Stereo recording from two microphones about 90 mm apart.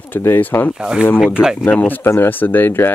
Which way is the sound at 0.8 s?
10° right (ahead or behind).